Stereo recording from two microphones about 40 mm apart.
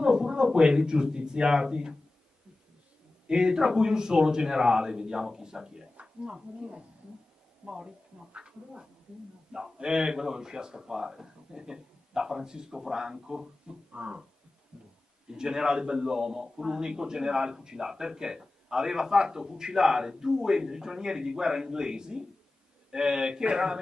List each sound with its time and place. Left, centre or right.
0.0 s speech: centre
3.3 s a man's voice: centre
9.5 s a man's voice: centre
13.9 s speech: right
14.7 s heart sounds: centre
15.3 s a man's voice: centre